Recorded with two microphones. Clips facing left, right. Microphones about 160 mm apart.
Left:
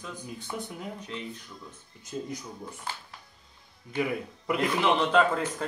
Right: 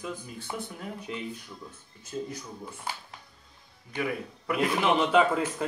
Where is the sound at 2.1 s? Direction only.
15° left (ahead or behind).